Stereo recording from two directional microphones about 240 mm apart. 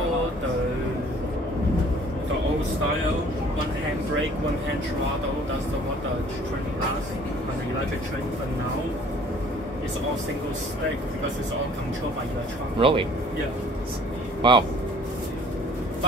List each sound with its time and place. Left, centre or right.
12.7 s speech: right
14.4 s speech: centre